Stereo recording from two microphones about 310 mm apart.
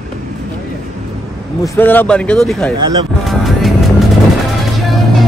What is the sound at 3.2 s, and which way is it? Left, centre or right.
Music, centre.